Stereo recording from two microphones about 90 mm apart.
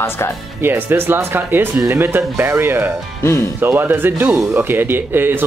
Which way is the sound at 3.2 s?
30° left (ahead or behind).